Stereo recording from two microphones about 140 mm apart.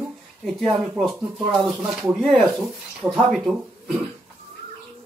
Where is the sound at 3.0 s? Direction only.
15° right (ahead or behind).